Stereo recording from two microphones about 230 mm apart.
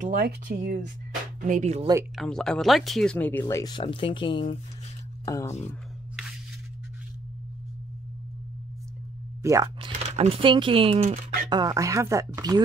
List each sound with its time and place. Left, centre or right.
0.0 s speech: right
2.1 s speech: centre
9.4 s speech: centre
11.5 s speech: centre